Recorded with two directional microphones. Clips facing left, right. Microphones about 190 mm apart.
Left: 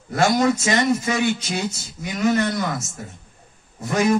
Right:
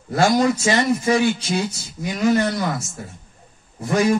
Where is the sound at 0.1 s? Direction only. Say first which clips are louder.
Right 1 dB; 30° right (ahead or behind).